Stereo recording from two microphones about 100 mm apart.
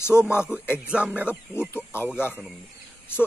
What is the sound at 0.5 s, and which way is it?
Speech, 25° left (ahead or behind).